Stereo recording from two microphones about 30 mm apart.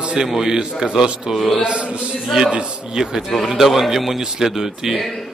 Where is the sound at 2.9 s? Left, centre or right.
Right.